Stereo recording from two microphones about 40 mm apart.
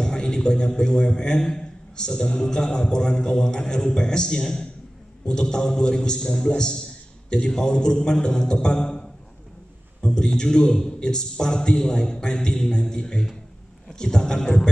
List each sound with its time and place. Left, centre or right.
0.0 s a man's voice: centre
10.0 s a man's voice: centre